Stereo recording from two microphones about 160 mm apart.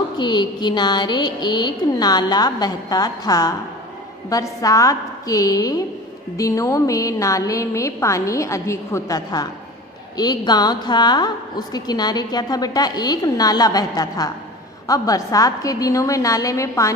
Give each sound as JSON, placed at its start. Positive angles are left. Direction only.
{"t": 0.2, "sound": "a woman's voice", "side_deg": 25}